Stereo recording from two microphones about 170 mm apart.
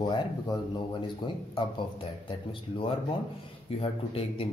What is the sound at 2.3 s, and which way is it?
Speech, 30° left (ahead or behind).